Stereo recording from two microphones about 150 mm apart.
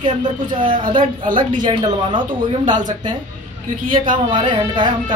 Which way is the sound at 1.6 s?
30° right (ahead or behind).